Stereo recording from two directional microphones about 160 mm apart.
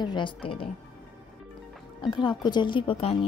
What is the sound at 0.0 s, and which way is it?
Speech, 30° left (ahead or behind).